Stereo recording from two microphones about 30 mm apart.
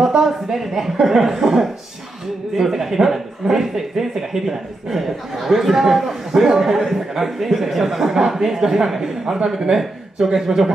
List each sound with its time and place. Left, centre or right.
0.2 s speech: centre